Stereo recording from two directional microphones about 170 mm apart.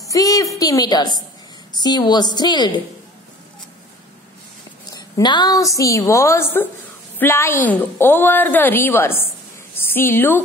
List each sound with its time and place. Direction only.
0.1 s a woman's voice: 20° left (ahead or behind)
4.9 s a woman's voice: 25° left (ahead or behind)